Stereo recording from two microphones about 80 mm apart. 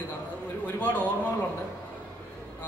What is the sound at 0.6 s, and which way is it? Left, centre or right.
Speech, left.